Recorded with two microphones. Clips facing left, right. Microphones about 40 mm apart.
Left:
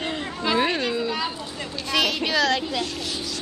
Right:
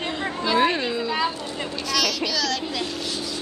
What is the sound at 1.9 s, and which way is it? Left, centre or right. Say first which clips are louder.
Speech: left 3 dB; left.